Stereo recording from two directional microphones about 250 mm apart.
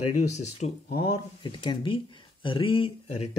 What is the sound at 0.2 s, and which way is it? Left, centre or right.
Speech, left.